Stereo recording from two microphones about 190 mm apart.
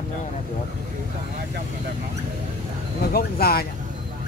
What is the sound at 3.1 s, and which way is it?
Speech, 55° left (ahead or behind).